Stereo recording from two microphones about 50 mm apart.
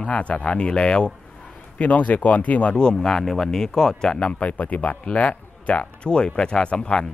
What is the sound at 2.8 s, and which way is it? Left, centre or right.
Speech, centre.